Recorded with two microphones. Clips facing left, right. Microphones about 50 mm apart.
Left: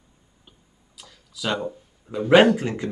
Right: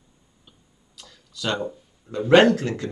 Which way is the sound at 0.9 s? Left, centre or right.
Centre.